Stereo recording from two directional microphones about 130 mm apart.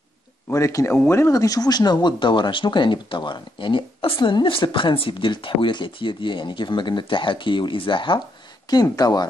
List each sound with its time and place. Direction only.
0.5 s speech: 25° left (ahead or behind); by 8.2 s 40° left (ahead or behind)
8.6 s speech: 30° left (ahead or behind)